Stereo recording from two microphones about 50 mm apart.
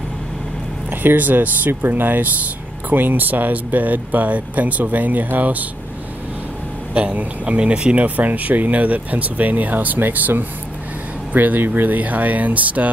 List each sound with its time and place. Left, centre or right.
1.0 s speech: right
7.2 s speech: right